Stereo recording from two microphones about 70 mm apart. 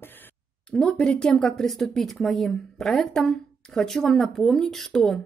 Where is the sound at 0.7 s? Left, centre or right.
Centre.